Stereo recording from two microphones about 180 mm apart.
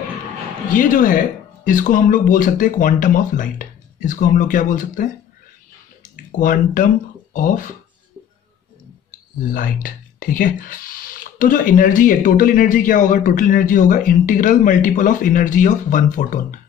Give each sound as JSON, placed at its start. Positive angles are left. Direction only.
{"t": 0.7, "sound": "speech", "side_deg": 50}
{"t": 6.1, "sound": "speech", "side_deg": 45}
{"t": 9.5, "sound": "speech", "side_deg": 50}